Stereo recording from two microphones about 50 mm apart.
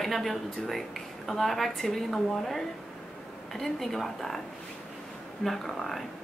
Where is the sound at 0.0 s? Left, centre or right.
Centre.